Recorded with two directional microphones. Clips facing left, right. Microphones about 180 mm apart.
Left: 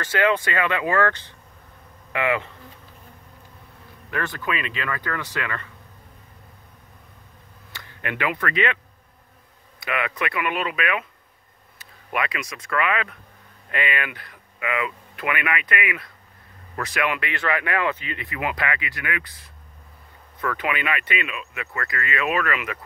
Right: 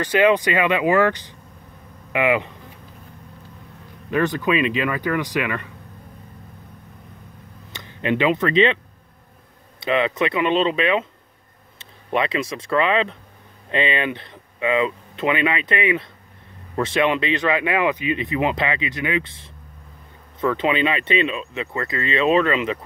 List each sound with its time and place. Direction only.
0.0 s speech: 15° right (ahead or behind)
4.1 s speech: 20° right (ahead or behind)
7.7 s speech: 20° right (ahead or behind)
9.8 s speech: 25° right (ahead or behind)